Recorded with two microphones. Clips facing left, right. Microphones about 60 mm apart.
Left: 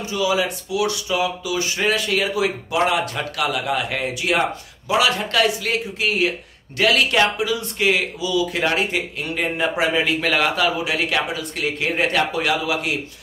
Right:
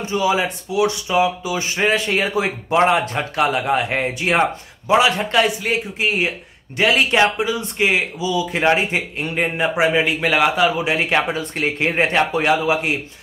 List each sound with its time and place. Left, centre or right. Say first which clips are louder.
0.0 s speech: right 2 dB; right